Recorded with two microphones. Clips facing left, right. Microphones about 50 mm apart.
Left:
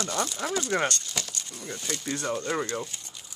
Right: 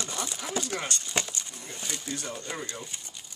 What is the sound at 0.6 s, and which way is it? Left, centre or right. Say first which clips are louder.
Speech: left 7 dB; left.